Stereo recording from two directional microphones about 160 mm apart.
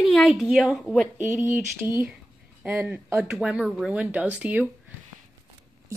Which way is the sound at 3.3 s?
5° right (ahead or behind).